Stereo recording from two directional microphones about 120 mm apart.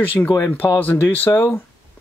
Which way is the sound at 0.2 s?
10° left (ahead or behind).